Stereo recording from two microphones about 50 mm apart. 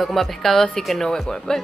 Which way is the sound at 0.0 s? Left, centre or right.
Centre.